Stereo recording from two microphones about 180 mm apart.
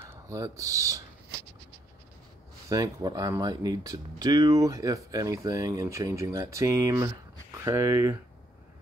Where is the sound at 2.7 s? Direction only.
20° right (ahead or behind).